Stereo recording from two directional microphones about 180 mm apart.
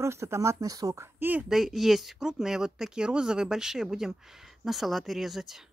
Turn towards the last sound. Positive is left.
turn(degrees=0)  # may be behind; listen again after turning